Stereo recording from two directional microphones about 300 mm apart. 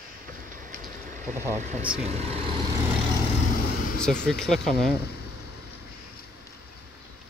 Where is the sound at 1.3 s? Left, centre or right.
Centre.